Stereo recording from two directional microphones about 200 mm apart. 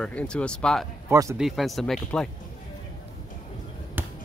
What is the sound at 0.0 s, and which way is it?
Speech, 5° left (ahead or behind).